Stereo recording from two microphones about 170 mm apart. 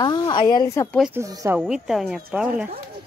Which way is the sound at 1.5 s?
5° right (ahead or behind).